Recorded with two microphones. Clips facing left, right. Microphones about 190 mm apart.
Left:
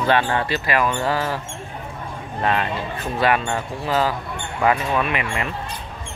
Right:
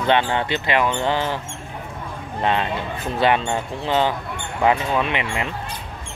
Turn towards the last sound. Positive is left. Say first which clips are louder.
# even
turn(degrees=-20)  # may be behind; listen again after turning